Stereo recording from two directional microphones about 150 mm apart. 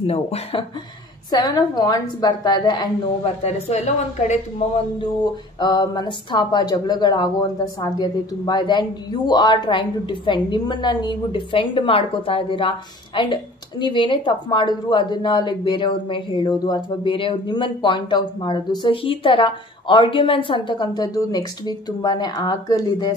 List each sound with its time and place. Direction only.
0.0 s a woman's voice: 40° left (ahead or behind)
1.3 s a woman's voice: 25° left (ahead or behind)
3.4 s a woman's voice: 45° left (ahead or behind)
5.6 s a woman's voice: 30° left (ahead or behind)